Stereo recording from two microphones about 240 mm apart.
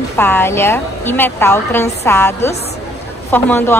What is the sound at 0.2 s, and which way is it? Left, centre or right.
A woman's voice, centre.